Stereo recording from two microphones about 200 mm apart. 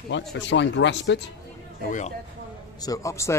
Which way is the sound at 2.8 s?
15° left (ahead or behind).